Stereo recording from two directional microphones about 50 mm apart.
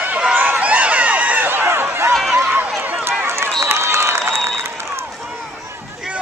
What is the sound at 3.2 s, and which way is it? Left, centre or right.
Run, right.